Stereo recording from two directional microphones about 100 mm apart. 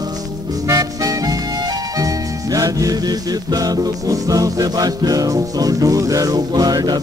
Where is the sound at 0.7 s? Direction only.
35° right (ahead or behind).